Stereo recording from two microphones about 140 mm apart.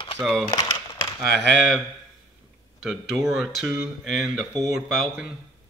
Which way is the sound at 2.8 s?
Centre (ahead or behind).